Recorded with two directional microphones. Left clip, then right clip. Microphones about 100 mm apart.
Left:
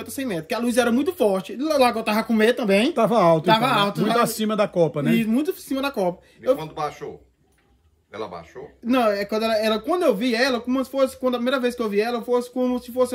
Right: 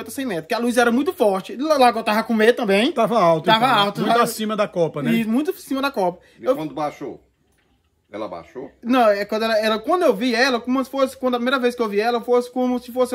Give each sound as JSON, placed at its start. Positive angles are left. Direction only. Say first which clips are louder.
{"t": 0.0, "sound": "speech", "louder": "right 2 dB", "side_deg": -30}
{"t": 2.9, "sound": "a man's voice", "louder": "even", "side_deg": 0}
{"t": 3.4, "sound": "speech", "louder": "right 3 dB", "side_deg": -30}
{"t": 4.2, "sound": "a man's voice", "louder": "right 1 dB", "side_deg": 0}
{"t": 5.1, "sound": "speech", "louder": "right 1 dB", "side_deg": -30}
{"t": 8.8, "sound": "speech", "louder": "right 4 dB", "side_deg": -30}